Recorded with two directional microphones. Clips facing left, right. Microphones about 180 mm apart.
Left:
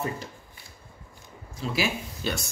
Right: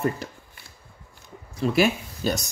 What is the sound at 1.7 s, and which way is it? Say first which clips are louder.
Speech: right 7 dB; 50° right (ahead or behind).